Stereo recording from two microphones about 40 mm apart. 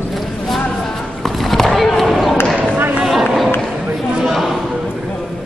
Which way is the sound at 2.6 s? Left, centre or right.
Right.